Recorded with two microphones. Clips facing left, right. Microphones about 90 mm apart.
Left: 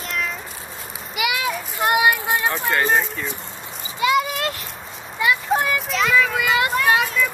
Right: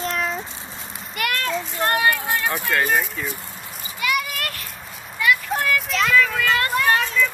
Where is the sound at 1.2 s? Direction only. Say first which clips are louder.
Left 1 dB; 10° left (ahead or behind).